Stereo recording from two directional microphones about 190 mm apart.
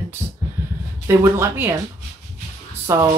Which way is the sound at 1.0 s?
15° right (ahead or behind).